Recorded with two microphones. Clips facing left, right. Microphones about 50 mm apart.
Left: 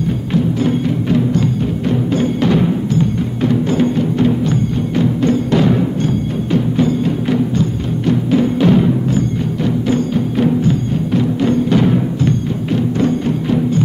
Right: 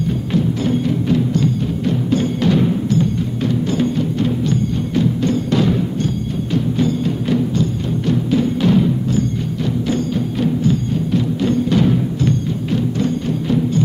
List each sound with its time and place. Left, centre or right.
0.3 s music: centre